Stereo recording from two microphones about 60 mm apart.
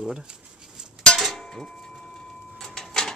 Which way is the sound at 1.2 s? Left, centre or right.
Centre.